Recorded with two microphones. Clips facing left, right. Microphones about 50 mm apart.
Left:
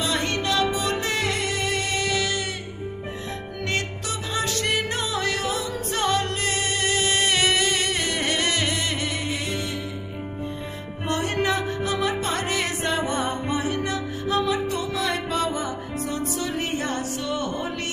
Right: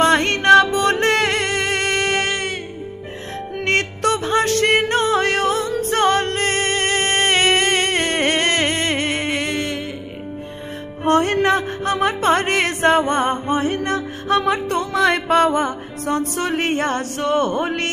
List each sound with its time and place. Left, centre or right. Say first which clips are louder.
0.0 s music: right 10 dB; right
3.6 s music: right 10 dB; right
11.1 s music: right 8 dB; right